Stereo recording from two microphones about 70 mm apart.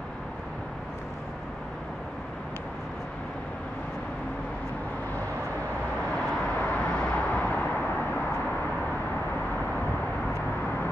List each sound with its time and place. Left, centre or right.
6.7 s vehicle: centre